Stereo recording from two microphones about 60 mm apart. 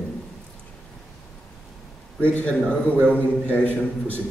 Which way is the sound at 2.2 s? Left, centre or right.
Left.